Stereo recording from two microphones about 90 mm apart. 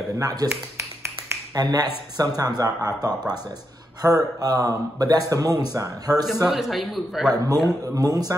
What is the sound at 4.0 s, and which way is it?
A man's voice, 40° right (ahead or behind).